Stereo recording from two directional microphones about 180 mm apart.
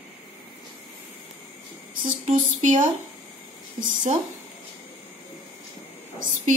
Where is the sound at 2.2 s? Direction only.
40° right (ahead or behind).